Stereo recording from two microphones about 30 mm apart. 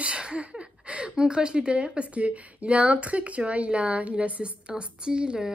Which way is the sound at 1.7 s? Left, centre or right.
Right.